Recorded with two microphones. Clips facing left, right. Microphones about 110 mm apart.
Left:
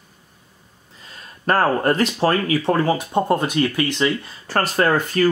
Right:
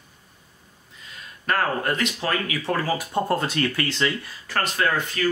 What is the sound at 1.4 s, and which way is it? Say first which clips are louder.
Speech: left 6 dB; 40° left (ahead or behind).